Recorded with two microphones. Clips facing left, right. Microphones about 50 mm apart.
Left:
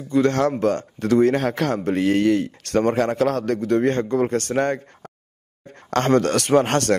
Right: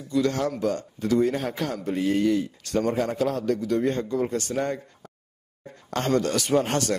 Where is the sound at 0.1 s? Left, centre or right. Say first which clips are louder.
Left 6 dB; left.